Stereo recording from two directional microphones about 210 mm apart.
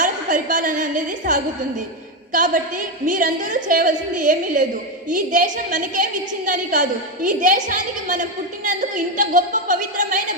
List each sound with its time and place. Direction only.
0.0 s a woman's voice: 40° right (ahead or behind)